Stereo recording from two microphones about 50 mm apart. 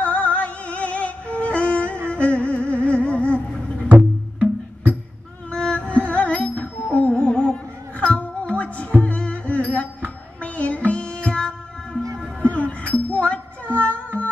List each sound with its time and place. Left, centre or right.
0.0 s music: left
3.9 s music: right
5.5 s music: centre
12.4 s music: left